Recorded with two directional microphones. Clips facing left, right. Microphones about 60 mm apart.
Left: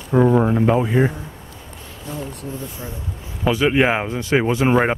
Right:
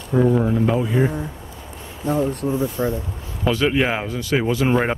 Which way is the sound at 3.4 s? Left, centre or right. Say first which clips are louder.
Left 2 dB; centre.